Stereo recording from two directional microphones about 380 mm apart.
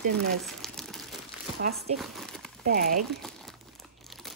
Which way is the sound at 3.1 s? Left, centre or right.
Centre.